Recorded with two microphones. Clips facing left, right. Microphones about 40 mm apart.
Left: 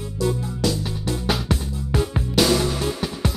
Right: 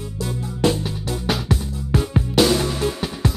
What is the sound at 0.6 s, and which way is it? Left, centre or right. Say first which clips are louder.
Music: right 4 dB; right.